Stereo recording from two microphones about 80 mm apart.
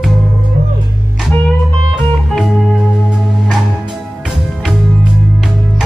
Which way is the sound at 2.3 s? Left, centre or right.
Centre.